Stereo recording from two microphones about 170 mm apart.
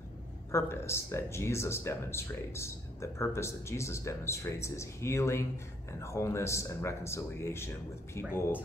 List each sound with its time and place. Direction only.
0.5 s speech: 15° left (ahead or behind)